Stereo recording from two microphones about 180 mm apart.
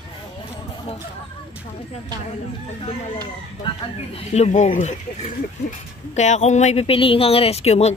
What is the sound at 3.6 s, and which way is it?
Speech, 35° left (ahead or behind).